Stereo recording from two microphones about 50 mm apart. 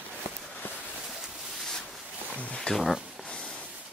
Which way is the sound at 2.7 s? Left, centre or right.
Centre.